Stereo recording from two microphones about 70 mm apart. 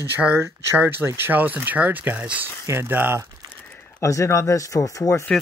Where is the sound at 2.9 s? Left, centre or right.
Right.